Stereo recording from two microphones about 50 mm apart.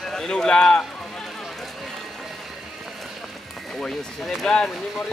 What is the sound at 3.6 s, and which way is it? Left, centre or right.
Speech, centre.